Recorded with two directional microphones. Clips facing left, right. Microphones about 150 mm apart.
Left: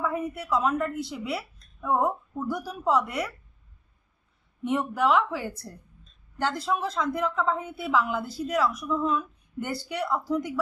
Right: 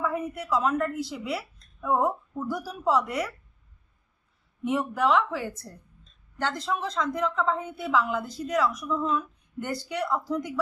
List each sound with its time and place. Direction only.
0.0 s a woman's voice: centre (ahead or behind)
4.6 s a woman's voice: centre (ahead or behind)